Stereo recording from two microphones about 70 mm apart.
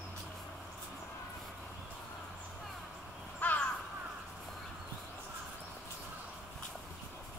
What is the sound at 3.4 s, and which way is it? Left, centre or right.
Crow, left.